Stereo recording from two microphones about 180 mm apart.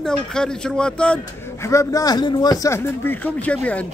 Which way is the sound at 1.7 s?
15° left (ahead or behind).